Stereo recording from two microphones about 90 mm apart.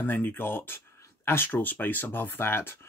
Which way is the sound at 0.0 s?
20° left (ahead or behind).